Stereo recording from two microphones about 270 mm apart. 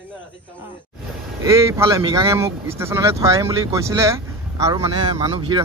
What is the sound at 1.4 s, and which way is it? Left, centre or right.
Speech, centre.